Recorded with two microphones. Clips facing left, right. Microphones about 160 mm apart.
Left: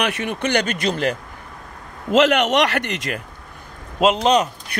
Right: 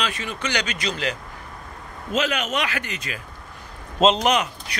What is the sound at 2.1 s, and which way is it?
Speech, 70° left (ahead or behind).